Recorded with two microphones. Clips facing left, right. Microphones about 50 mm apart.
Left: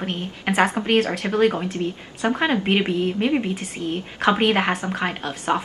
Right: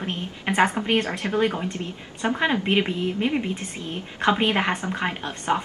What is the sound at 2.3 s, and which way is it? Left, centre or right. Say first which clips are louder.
A woman's voice: left 1 dB; centre.